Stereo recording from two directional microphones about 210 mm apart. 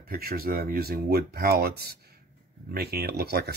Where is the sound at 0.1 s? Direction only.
45° right (ahead or behind).